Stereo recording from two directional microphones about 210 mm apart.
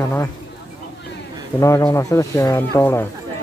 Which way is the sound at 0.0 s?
10° left (ahead or behind).